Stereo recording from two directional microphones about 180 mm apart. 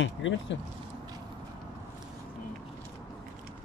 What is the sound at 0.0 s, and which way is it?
Speech, 90° left.